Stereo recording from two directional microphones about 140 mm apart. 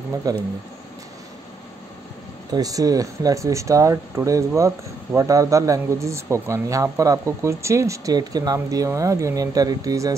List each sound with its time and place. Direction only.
0.3 s speech: 25° right (ahead or behind)
2.5 s speech: 25° right (ahead or behind)